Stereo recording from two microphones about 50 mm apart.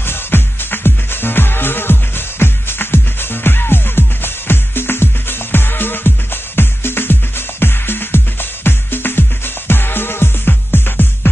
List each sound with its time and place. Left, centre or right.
0.0 s music: left